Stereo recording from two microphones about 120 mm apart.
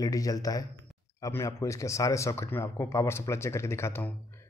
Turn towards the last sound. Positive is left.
turn(degrees=20)  # may be behind; listen again after turning